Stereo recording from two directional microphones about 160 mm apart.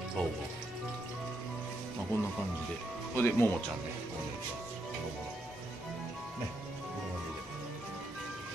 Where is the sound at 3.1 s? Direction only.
15° left (ahead or behind).